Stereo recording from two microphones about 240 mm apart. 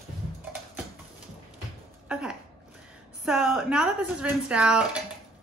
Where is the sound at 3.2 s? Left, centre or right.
Centre.